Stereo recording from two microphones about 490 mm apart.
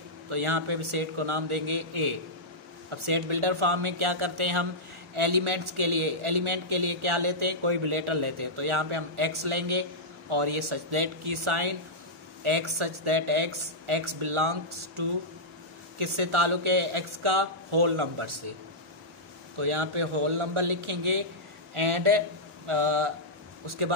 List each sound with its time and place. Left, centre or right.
0.3 s a man's voice: right
19.6 s a man's voice: right